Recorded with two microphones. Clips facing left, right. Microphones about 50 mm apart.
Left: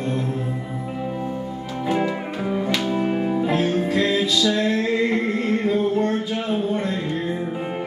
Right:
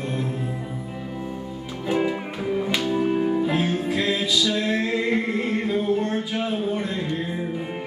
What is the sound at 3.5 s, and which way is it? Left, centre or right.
Music, centre.